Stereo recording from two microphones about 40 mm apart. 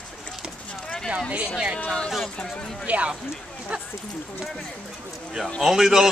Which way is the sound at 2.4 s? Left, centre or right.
Centre.